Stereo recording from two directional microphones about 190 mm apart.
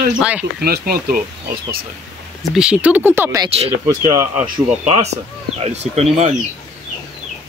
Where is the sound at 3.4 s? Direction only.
30° right (ahead or behind).